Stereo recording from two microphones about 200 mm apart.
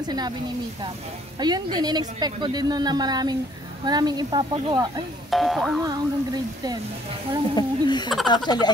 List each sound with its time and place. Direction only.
0.0 s a woman's voice: 20° right (ahead or behind)
1.4 s a woman's voice: 20° right (ahead or behind)
5.3 s speech: centre (ahead or behind)
5.9 s a woman's voice: 20° right (ahead or behind)
7.5 s speech: 20° left (ahead or behind)